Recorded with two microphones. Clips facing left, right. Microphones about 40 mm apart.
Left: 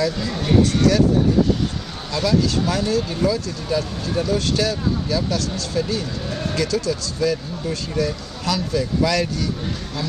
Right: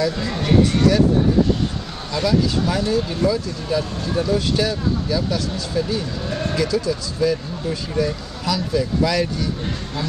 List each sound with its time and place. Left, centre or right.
0.3 s speech: centre
2.1 s speech: centre